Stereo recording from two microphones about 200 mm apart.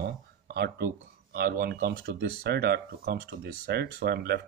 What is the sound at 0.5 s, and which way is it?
Speech, 55° right (ahead or behind).